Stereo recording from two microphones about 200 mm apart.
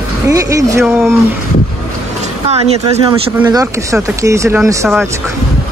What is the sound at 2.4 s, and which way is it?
Speech, 30° right (ahead or behind).